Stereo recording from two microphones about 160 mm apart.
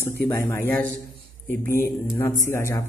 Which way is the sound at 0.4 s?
15° left (ahead or behind).